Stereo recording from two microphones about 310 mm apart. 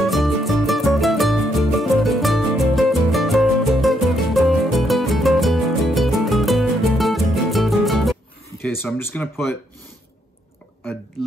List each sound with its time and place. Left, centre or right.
0.0 s music: centre